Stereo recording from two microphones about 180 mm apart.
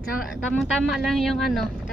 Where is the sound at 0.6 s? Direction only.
Centre (ahead or behind).